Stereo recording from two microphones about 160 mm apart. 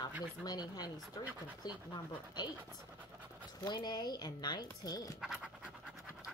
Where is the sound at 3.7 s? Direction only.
25° left (ahead or behind).